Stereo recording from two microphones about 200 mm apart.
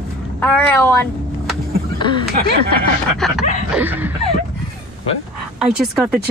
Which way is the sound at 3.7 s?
10° right (ahead or behind).